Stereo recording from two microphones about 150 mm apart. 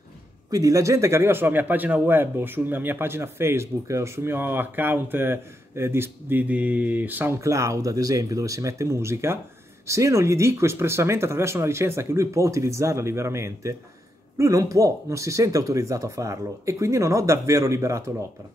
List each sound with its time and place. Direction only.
0.5 s a man's voice: 20° right (ahead or behind)